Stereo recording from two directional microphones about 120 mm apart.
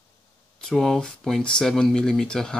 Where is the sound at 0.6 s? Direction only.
5° left (ahead or behind).